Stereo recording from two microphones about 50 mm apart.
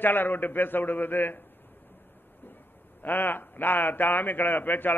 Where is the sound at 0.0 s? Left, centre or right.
Left.